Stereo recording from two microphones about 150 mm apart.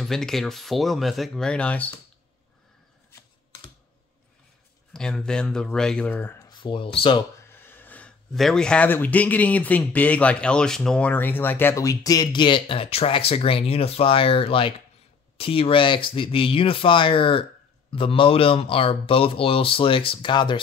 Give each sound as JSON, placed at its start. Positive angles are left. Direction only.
{"t": 0.0, "sound": "speech", "side_deg": 5}
{"t": 4.9, "sound": "speech", "side_deg": 5}
{"t": 6.4, "sound": "speech", "side_deg": 30}
{"t": 7.5, "sound": "speech", "side_deg": 15}